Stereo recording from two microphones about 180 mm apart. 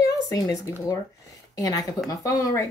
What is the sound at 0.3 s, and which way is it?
Speech, 20° left (ahead or behind).